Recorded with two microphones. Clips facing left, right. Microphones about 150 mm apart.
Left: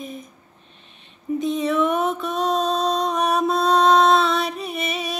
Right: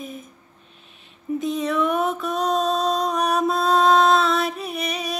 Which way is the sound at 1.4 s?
Centre (ahead or behind).